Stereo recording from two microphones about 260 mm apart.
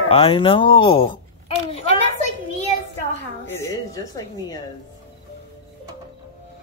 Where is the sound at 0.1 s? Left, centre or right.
Centre.